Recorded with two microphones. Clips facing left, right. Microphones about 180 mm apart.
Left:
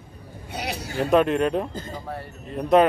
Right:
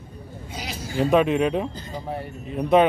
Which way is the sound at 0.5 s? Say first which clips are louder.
Left 1 dB; 65° left (ahead or behind).